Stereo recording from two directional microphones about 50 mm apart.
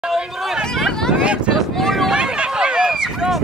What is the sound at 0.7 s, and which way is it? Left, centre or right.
Vehicle, centre.